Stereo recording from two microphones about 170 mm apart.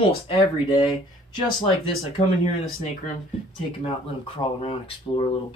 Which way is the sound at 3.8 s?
30° left (ahead or behind).